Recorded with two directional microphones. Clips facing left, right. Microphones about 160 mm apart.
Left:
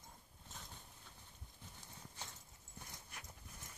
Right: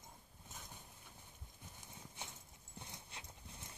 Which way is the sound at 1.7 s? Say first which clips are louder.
Right 1 dB; 15° right (ahead or behind).